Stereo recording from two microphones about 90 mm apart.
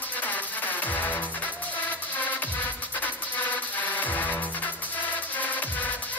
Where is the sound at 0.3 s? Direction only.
20° left (ahead or behind).